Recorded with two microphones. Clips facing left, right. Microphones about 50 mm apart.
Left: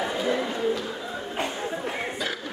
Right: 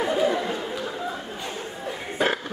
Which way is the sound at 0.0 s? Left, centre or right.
Right.